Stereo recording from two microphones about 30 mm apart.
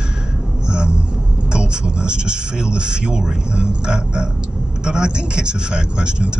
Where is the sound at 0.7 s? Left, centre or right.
Right.